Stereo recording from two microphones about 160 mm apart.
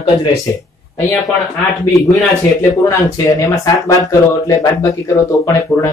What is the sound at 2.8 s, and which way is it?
Speech, 20° left (ahead or behind).